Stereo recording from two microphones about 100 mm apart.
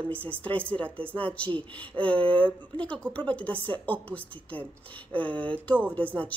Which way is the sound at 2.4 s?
15° left (ahead or behind).